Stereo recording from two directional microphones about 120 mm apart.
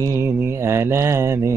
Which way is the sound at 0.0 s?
25° right (ahead or behind).